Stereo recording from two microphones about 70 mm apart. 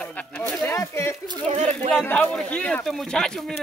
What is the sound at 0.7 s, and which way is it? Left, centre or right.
Speech, left.